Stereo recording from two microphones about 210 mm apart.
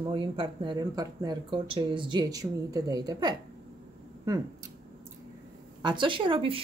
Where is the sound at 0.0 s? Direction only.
25° right (ahead or behind).